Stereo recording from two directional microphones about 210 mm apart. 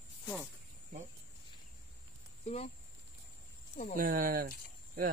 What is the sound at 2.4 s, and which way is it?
Speech, 30° left (ahead or behind).